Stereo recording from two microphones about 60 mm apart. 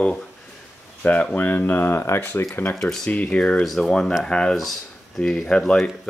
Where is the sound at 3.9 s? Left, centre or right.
Centre.